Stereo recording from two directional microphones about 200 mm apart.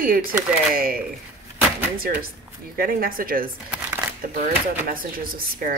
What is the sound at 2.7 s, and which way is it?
Speech, 45° right (ahead or behind).